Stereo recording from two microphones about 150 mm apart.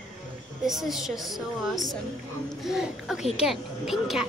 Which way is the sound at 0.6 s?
Centre (ahead or behind).